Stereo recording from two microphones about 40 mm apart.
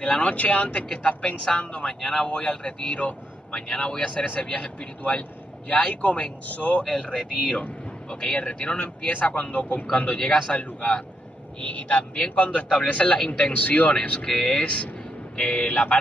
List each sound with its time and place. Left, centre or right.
0.0 s speech: left
0.3 s speech: left
1.0 s speech: left
6.8 s speech: left
11.6 s speech: left
13.5 s speech: left
14.2 s speech: centre
14.5 s speech: left